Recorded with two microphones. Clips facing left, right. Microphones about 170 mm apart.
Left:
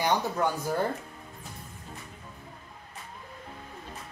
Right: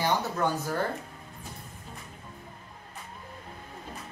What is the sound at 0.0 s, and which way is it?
Speech, 15° left (ahead or behind).